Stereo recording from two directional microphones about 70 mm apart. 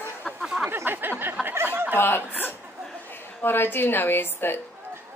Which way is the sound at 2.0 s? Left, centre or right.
Left.